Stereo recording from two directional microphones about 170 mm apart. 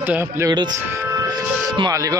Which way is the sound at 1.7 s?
25° right (ahead or behind).